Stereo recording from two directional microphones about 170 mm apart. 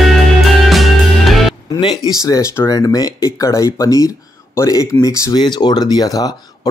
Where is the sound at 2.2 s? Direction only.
15° left (ahead or behind).